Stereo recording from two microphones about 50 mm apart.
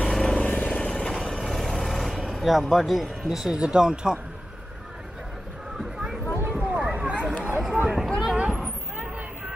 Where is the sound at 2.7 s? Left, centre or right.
Centre.